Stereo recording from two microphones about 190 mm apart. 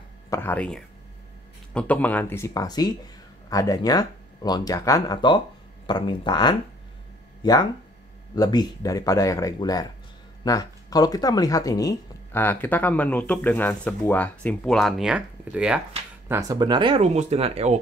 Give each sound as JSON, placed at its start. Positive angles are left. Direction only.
{"t": 0.3, "sound": "speech", "side_deg": 10}
{"t": 16.3, "sound": "speech", "side_deg": -20}